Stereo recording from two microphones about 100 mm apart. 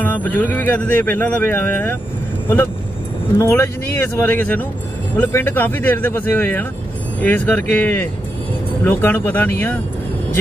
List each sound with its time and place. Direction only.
0.0 s speech: 20° left (ahead or behind)
3.3 s speech: 25° left (ahead or behind)